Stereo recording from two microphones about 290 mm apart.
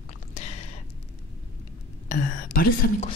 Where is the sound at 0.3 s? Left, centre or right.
Left.